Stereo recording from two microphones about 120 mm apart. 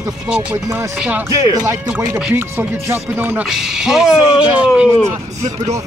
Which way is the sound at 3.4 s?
5° right (ahead or behind).